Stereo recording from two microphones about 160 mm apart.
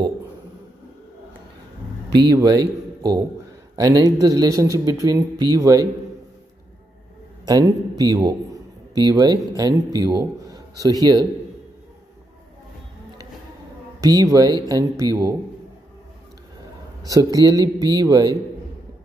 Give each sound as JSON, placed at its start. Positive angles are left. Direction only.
{"t": 2.1, "sound": "a man's voice", "side_deg": -25}
{"t": 7.4, "sound": "speech", "side_deg": -25}
{"t": 14.0, "sound": "speech", "side_deg": -20}
{"t": 17.0, "sound": "speech", "side_deg": -20}